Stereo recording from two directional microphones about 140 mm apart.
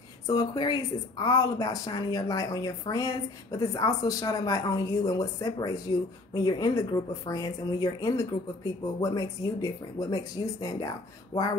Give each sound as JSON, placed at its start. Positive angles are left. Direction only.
{"t": 0.3, "sound": "speech", "side_deg": 30}